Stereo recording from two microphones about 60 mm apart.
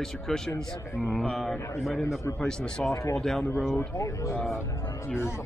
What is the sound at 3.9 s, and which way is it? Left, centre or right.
Speech, left.